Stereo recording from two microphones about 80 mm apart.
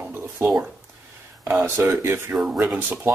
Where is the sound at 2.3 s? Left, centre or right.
Centre.